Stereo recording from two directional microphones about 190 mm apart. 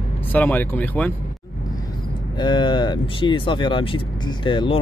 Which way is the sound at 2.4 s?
25° left (ahead or behind).